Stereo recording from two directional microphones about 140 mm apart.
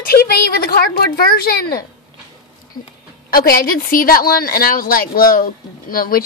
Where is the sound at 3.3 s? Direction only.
90° left.